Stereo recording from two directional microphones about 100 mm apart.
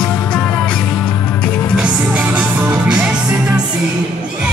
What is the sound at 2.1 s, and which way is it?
Music, 15° right (ahead or behind).